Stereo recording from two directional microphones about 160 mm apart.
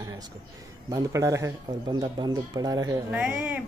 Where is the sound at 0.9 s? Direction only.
20° right (ahead or behind).